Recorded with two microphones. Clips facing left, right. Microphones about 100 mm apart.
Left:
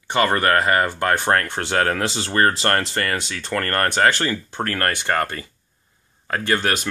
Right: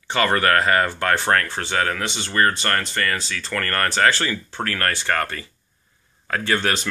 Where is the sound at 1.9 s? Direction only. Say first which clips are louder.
Left 3 dB; 35° left (ahead or behind).